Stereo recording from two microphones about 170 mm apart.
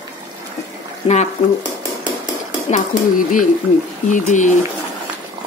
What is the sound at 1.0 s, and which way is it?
Speech, 30° left (ahead or behind).